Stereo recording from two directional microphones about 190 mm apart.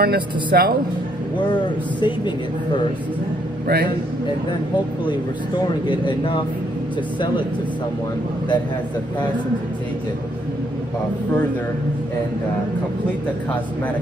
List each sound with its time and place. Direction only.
0.0 s speech: 55° right (ahead or behind)
1.5 s a man's voice: 25° left (ahead or behind)
3.6 s speech: 55° right (ahead or behind)
5.9 s a man's voice: 25° left (ahead or behind)